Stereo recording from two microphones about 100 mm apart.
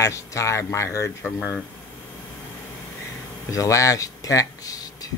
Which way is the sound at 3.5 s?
35° left (ahead or behind).